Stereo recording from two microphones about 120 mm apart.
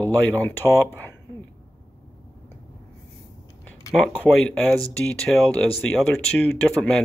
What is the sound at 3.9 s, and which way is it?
Speech, 10° left (ahead or behind).